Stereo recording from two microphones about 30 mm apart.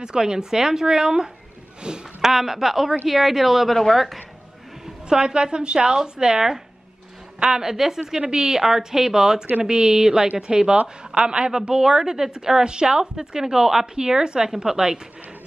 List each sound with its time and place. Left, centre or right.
0.0 s a woman's voice: right
2.2 s speech: centre
3.7 s speech: centre
5.1 s a woman's voice: right
7.3 s a woman's voice: right
7.6 s speech: centre
8.3 s a woman's voice: right
8.5 s a woman's voice: centre
10.3 s a woman's voice: right